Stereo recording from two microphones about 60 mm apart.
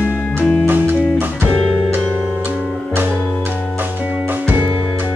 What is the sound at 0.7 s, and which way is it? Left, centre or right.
Music, right.